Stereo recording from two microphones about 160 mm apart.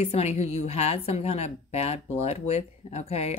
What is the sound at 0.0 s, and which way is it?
A woman's voice, 45° left (ahead or behind).